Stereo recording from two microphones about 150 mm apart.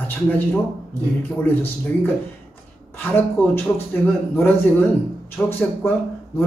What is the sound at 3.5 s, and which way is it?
A man's voice, 15° left (ahead or behind).